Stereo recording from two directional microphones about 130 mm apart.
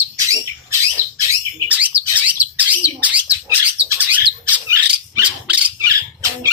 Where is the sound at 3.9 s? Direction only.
10° right (ahead or behind).